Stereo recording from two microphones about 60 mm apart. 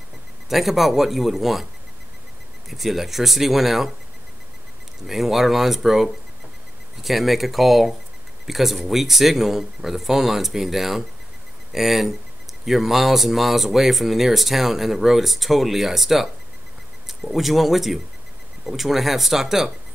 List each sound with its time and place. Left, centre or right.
0.5 s speech: centre
2.7 s speech: centre
5.0 s speech: centre